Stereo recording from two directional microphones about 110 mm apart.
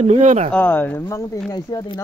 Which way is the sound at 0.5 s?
15° left (ahead or behind).